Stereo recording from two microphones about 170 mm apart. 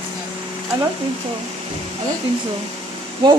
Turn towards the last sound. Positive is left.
turn(degrees=-30)  # may be behind; listen again after turning